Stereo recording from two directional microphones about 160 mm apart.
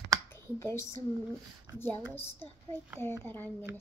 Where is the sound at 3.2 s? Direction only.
15° left (ahead or behind).